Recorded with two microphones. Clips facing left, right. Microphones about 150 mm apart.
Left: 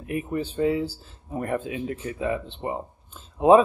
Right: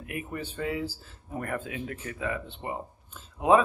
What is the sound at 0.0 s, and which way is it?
Speech, 30° left (ahead or behind).